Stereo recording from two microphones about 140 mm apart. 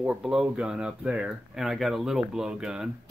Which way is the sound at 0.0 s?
5° right (ahead or behind).